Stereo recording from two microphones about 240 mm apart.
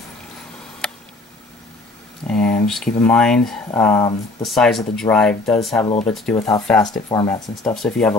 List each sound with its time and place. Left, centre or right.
2.2 s speech: centre
7.1 s speech: centre
7.6 s speech: centre